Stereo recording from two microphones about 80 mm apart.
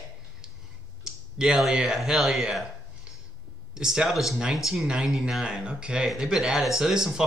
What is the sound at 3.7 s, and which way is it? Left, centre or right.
Speech, centre.